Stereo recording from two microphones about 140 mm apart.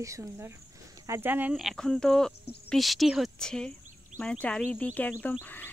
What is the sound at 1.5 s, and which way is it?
Speech, centre (ahead or behind).